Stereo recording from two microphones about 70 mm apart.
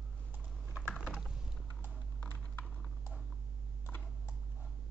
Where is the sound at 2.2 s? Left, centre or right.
Left.